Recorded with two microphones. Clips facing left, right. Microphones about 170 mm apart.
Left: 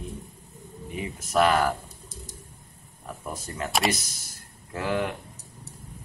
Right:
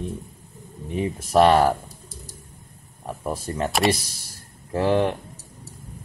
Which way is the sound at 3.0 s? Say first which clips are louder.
Right 7 dB; 30° right (ahead or behind).